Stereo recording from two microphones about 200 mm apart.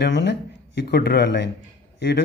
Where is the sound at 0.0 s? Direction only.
60° left (ahead or behind).